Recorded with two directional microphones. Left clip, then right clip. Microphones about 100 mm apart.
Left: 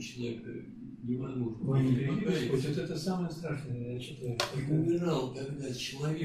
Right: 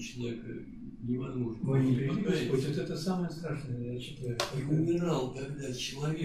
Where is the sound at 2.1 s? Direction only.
Centre (ahead or behind).